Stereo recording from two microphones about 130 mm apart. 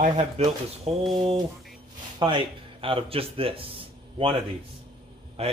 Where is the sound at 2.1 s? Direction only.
40° right (ahead or behind).